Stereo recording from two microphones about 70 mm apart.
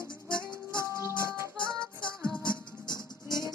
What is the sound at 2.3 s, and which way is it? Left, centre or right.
Music, centre.